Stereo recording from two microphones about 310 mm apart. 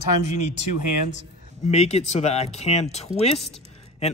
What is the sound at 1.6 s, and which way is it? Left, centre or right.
A man's voice, left.